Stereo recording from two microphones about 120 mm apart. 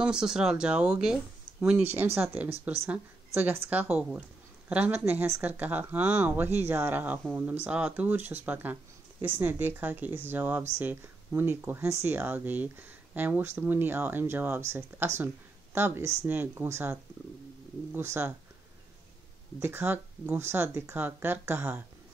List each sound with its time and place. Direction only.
0.0 s speech: 5° right (ahead or behind)
2.1 s speech: 15° right (ahead or behind)
17.9 s speech: 20° right (ahead or behind)
19.6 s speech: 15° right (ahead or behind)